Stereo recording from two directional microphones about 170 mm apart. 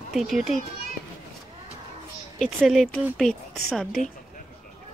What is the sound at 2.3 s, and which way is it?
Speech, centre (ahead or behind).